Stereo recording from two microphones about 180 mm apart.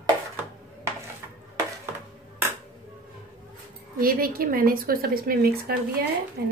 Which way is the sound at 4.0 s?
55° right (ahead or behind).